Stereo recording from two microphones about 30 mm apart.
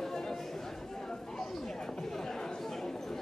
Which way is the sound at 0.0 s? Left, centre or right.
Centre.